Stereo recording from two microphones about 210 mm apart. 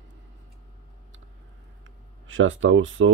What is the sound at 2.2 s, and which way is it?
Speech, 70° right (ahead or behind).